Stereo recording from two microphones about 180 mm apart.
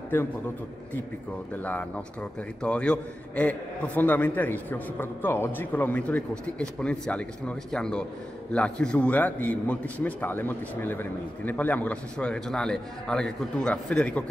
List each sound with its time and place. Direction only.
1.5 s a man's voice: 10° left (ahead or behind)